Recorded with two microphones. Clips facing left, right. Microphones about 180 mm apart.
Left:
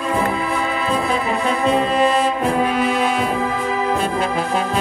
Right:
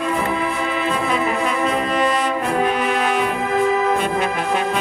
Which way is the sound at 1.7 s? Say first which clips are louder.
Left 6 dB; 30° left (ahead or behind).